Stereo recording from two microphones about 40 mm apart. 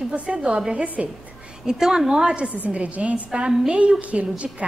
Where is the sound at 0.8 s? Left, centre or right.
Right.